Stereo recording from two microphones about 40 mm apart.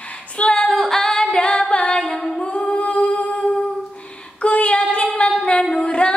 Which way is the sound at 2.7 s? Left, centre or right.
Left.